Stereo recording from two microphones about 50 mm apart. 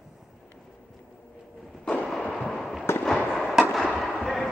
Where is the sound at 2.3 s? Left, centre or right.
Centre.